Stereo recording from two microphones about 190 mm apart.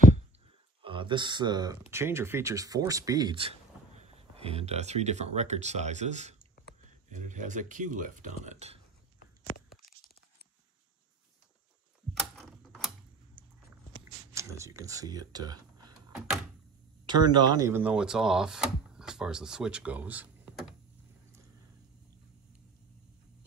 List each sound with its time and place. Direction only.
0.8 s speech: 25° right (ahead or behind)
12.4 s typing: centre (ahead or behind)
14.3 s typing: 15° right (ahead or behind)
17.0 s speech: 25° right (ahead or behind); by 20.7 s 5° right (ahead or behind)